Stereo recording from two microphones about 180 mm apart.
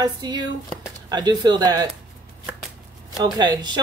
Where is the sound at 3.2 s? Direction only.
25° right (ahead or behind).